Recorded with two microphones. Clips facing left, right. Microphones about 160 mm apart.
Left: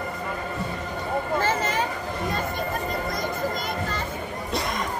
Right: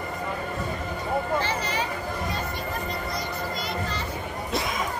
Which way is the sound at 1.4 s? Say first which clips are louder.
Left 3 dB; 50° left (ahead or behind).